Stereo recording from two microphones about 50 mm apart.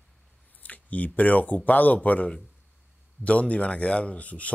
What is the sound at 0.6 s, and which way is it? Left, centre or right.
Speech, left.